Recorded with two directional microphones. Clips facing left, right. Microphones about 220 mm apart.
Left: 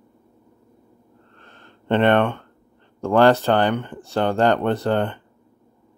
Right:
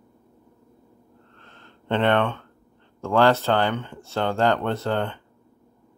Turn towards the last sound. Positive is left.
turn(degrees=15)  # may be behind; listen again after turning